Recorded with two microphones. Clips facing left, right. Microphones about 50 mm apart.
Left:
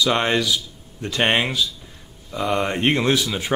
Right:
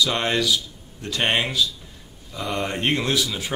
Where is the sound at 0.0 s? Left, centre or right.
Centre.